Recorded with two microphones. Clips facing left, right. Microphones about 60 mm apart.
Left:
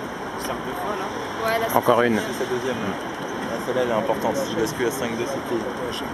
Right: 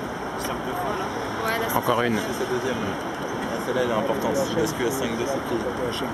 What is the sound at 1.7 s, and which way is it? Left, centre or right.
Speech, left.